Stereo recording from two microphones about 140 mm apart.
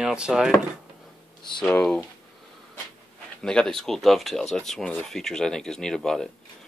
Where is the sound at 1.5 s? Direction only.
5° left (ahead or behind).